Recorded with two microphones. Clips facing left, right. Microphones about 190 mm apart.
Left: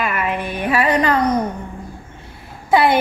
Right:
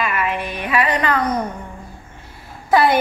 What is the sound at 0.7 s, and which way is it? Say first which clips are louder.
Speech: left 3 dB; 30° left (ahead or behind).